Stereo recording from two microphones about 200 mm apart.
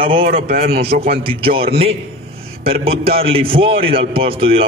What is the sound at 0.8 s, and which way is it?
A man's voice, 30° right (ahead or behind).